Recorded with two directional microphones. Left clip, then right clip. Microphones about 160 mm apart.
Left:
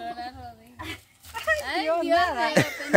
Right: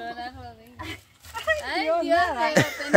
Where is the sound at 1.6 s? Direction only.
20° right (ahead or behind).